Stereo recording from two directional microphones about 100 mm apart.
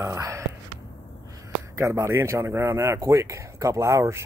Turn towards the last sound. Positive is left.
turn(degrees=-30)  # may be behind; listen again after turning